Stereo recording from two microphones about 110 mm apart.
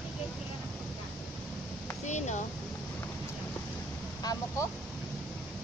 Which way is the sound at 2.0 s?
90° left.